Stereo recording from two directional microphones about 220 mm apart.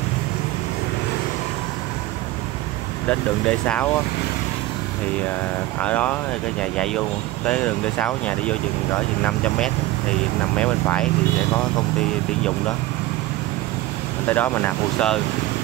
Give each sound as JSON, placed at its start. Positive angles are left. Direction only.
{"t": 3.1, "sound": "speech", "side_deg": 5}
{"t": 5.8, "sound": "speech", "side_deg": 5}
{"t": 14.2, "sound": "speech", "side_deg": 10}